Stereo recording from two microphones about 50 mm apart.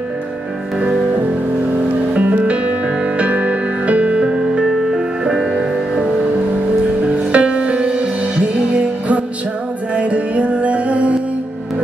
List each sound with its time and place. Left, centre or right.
2.1 s music: right
4.6 s music: centre
7.3 s music: right